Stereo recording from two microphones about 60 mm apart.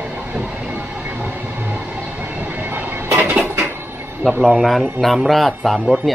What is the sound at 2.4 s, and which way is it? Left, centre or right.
Train, right.